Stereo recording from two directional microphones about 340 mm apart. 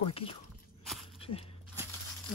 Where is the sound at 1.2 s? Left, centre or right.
Centre.